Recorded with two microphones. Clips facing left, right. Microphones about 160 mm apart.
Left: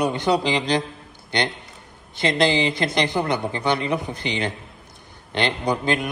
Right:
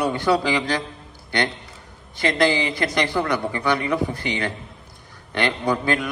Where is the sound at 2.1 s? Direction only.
20° left (ahead or behind).